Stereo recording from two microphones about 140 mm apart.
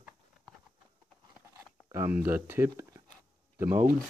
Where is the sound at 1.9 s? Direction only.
15° right (ahead or behind).